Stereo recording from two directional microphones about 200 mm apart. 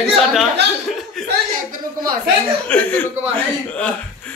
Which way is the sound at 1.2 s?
Centre (ahead or behind).